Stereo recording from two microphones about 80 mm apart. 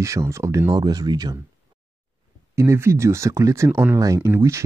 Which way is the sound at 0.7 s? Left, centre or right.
Right.